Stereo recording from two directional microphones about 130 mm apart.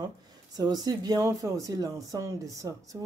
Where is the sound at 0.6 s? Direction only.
30° right (ahead or behind).